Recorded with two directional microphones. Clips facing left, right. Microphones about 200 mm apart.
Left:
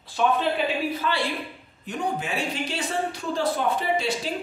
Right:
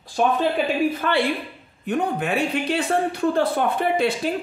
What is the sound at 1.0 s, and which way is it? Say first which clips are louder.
Speech: right 5 dB; 60° right (ahead or behind).